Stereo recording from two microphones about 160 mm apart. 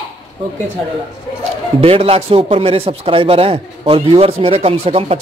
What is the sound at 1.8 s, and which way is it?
Speech, 40° right (ahead or behind).